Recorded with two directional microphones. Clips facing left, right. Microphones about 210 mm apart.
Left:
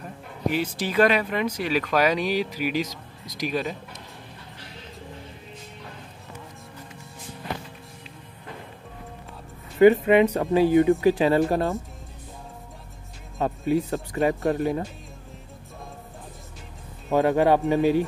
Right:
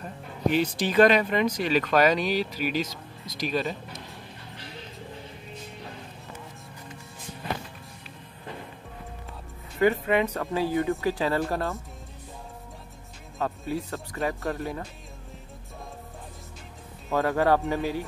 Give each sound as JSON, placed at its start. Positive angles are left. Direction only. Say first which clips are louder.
{"t": 0.0, "sound": "speech", "louder": "right 1 dB", "side_deg": 5}
{"t": 9.8, "sound": "speech", "louder": "left 7 dB", "side_deg": 20}
{"t": 13.4, "sound": "speech", "louder": "left 7 dB", "side_deg": 15}
{"t": 17.1, "sound": "speech", "louder": "left 4 dB", "side_deg": 15}